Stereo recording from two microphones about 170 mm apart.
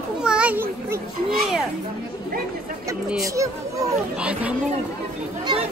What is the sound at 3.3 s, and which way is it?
Speech, 20° right (ahead or behind).